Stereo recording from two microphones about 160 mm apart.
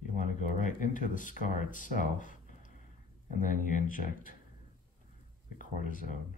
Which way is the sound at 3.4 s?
55° left (ahead or behind).